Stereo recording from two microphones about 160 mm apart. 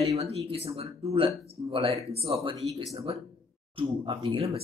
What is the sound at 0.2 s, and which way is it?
Speech, 40° right (ahead or behind).